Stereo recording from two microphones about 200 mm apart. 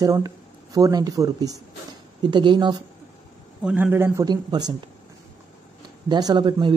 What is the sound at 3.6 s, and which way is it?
Speech, 5° right (ahead or behind).